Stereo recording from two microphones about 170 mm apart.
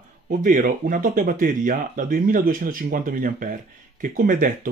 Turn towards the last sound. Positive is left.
turn(degrees=-55)  # may be behind; listen again after turning